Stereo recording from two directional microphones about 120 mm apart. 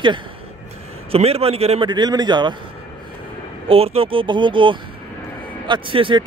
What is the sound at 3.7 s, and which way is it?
Speech, 55° right (ahead or behind).